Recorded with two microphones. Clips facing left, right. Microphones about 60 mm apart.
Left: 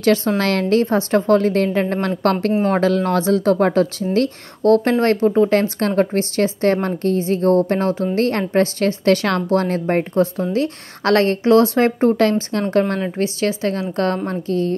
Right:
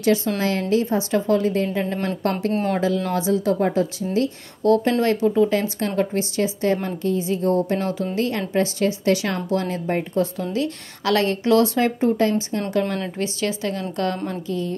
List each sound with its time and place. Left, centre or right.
0.0 s speech: left
5.0 s a woman's voice: left
5.5 s speech: left
8.2 s speech: left
12.2 s speech: left
12.8 s a woman's voice: left
14.5 s speech: left